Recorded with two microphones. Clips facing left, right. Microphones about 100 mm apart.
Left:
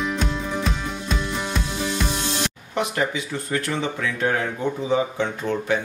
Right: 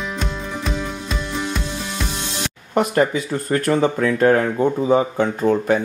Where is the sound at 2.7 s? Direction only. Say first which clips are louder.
Right 7 dB; 45° right (ahead or behind).